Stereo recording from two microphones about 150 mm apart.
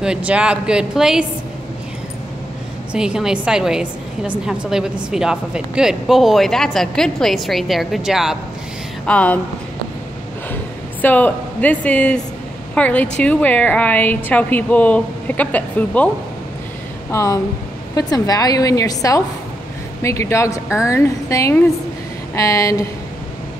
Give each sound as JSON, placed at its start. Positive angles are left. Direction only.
{"t": 0.0, "sound": "speech", "side_deg": -5}
{"t": 2.9, "sound": "speech", "side_deg": -5}
{"t": 9.0, "sound": "a woman's voice", "side_deg": 10}
{"t": 10.5, "sound": "a sound", "side_deg": 10}
{"t": 12.7, "sound": "a woman's voice", "side_deg": 10}
{"t": 17.1, "sound": "a woman's voice", "side_deg": 20}